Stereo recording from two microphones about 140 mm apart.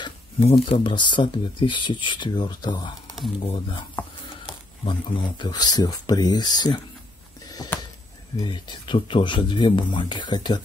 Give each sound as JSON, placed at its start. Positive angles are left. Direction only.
{"t": 0.4, "sound": "speech", "side_deg": 45}
{"t": 8.4, "sound": "speech", "side_deg": 35}